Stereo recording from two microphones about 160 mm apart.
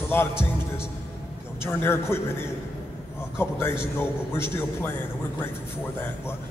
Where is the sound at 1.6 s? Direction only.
15° left (ahead or behind).